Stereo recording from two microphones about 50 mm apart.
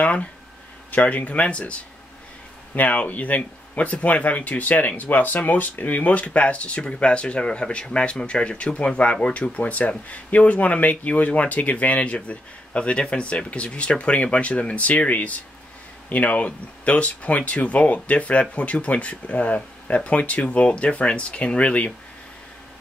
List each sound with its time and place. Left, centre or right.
0.0 s speech: left